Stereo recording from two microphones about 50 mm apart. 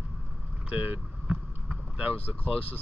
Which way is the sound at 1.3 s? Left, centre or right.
Right.